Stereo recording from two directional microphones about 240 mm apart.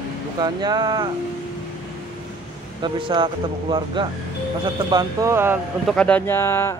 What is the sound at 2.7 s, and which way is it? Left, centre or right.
Speech, centre.